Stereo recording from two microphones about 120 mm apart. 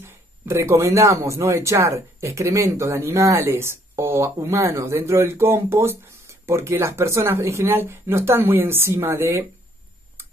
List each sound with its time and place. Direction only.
0.0 s speech: 20° right (ahead or behind)